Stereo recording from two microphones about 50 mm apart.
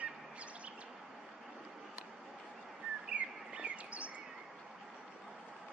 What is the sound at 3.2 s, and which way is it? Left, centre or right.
Bird, right.